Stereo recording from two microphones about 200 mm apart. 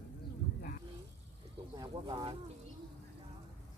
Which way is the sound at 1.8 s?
20° right (ahead or behind).